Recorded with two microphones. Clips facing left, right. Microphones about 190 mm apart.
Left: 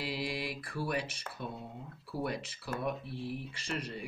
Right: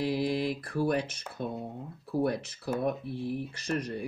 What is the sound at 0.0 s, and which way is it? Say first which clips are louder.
Speech: right 8 dB; 45° right (ahead or behind).